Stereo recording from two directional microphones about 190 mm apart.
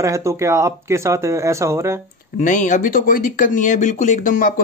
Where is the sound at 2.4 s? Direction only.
40° left (ahead or behind).